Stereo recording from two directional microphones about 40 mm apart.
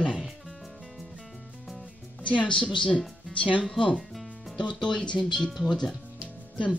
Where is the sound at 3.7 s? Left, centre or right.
Centre.